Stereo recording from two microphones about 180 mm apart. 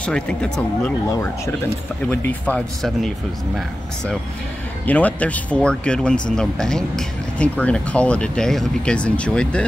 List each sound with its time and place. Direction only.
0.0 s speech: 5° left (ahead or behind)
1.0 s speech: 15° left (ahead or behind)